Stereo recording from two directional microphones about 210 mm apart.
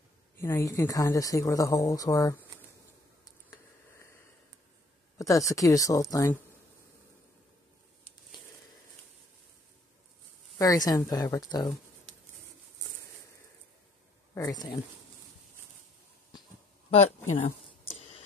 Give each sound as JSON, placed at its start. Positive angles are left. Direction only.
{"t": 0.4, "sound": "speech", "side_deg": 15}
{"t": 5.1, "sound": "speech", "side_deg": 15}
{"t": 10.6, "sound": "speech", "side_deg": 15}
{"t": 14.3, "sound": "speech", "side_deg": 15}